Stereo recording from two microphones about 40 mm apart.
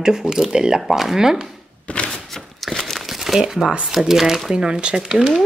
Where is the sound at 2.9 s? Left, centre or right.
Centre.